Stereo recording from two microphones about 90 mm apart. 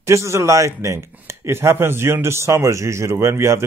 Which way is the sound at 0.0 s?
35° right (ahead or behind).